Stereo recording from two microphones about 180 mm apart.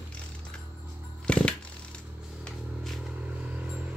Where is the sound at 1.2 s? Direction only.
5° left (ahead or behind).